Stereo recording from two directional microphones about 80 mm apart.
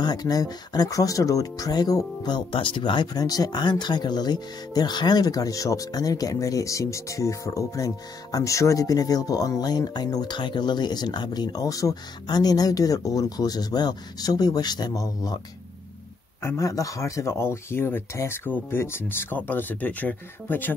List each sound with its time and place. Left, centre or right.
0.0 s speech: left
10.3 s speech: left
16.4 s speech: left